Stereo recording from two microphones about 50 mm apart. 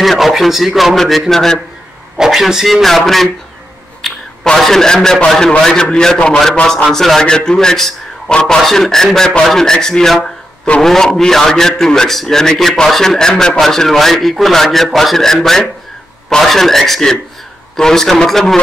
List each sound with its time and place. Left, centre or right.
0.0 s a man's voice: centre
2.1 s a man's voice: centre
4.6 s a man's voice: centre